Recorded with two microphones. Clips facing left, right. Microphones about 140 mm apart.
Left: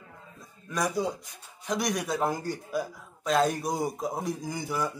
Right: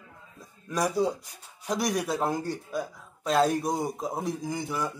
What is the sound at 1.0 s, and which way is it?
Speech, 35° right (ahead or behind).